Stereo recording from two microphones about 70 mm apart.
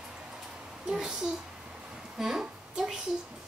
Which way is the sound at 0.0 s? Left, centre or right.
Centre.